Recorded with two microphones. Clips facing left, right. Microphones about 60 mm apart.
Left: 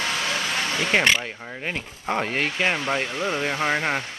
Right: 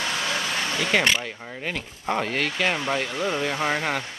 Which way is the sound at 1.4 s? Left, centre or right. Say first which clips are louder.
Left 1 dB; centre.